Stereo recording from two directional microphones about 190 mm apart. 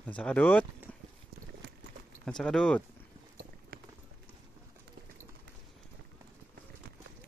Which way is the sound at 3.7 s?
55° right (ahead or behind).